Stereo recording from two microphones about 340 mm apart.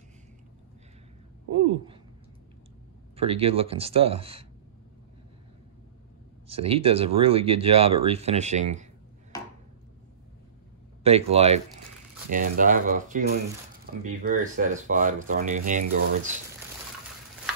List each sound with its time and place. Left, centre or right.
3.2 s speech: centre
6.4 s speech: centre
11.1 s speech: centre